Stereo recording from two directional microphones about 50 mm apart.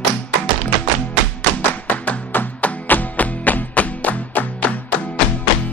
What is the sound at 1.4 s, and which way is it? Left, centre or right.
Music, left.